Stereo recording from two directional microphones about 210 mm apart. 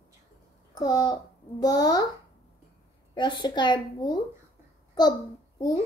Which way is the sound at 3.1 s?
20° left (ahead or behind).